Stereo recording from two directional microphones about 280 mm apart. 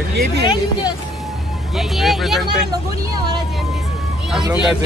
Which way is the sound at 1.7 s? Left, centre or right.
Centre.